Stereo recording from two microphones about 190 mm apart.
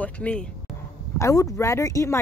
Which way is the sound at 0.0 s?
5° left (ahead or behind).